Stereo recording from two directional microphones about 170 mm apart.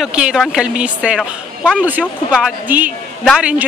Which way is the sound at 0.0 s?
5° right (ahead or behind).